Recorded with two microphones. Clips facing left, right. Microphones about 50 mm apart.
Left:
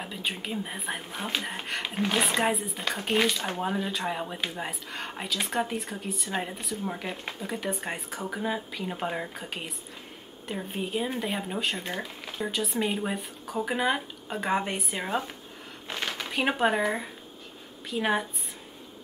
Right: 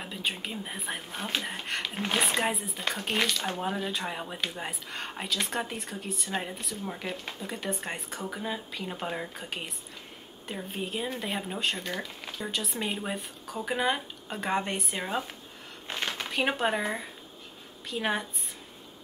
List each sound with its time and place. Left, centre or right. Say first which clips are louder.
0.0 s speech: even; centre
3.3 s speech: left 2 dB; centre
11.8 s speech: left 1 dB; centre
12.4 s speech: left 4 dB; centre